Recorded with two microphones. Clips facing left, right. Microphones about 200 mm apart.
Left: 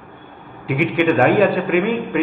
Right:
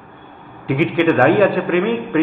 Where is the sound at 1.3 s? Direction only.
Centre (ahead or behind).